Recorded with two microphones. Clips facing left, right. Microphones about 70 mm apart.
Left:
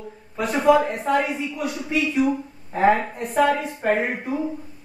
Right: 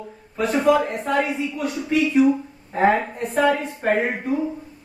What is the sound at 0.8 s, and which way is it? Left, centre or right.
Speech, centre.